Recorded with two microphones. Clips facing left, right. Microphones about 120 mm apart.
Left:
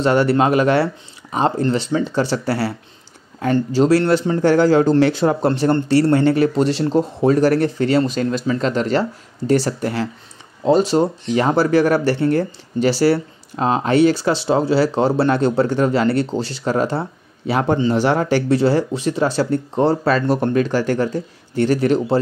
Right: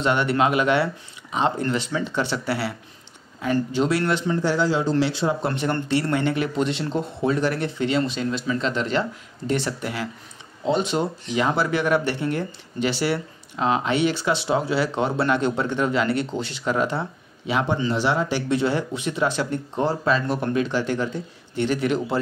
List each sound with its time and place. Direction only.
0.0 s speech: 35° left (ahead or behind)
3.7 s speech: 35° left (ahead or behind)
4.4 s speech: 50° left (ahead or behind)
5.5 s speech: 35° left (ahead or behind)